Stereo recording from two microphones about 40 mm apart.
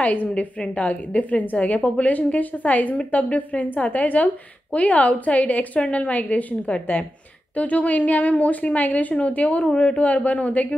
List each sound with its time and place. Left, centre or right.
0.0 s a woman's voice: left